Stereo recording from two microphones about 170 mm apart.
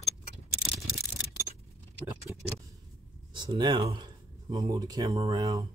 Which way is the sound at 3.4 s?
25° right (ahead or behind).